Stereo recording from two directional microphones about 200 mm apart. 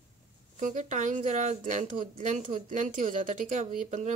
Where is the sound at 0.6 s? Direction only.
40° right (ahead or behind).